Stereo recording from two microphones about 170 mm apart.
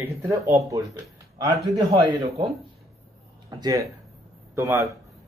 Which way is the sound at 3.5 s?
20° right (ahead or behind).